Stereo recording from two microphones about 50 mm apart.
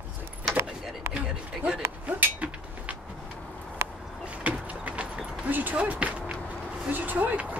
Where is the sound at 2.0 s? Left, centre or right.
Right.